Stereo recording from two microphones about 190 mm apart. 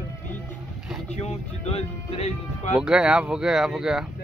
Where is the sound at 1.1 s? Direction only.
35° left (ahead or behind).